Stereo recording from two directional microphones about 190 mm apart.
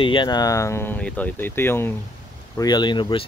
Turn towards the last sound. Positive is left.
turn(degrees=25)  # may be behind; listen again after turning